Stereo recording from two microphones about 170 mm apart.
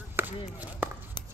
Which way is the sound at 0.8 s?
10° right (ahead or behind).